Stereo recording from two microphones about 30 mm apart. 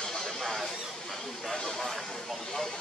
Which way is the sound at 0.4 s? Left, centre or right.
Centre.